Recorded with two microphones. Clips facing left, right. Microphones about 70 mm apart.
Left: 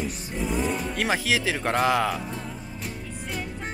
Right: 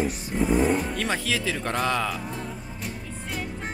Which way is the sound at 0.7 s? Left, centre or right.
Centre.